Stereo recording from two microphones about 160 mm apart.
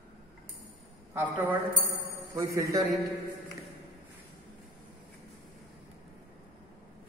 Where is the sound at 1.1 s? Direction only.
10° right (ahead or behind).